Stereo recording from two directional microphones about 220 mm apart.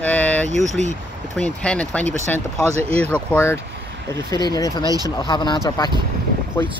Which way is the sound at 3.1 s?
10° left (ahead or behind).